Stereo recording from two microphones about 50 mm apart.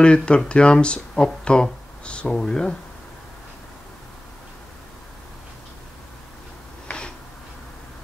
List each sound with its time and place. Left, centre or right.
0.0 s speech: left